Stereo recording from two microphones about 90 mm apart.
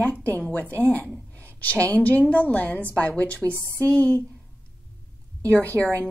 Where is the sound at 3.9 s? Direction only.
15° left (ahead or behind).